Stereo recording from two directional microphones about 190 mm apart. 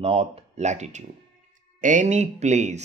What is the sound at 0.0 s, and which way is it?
Speech, 30° right (ahead or behind).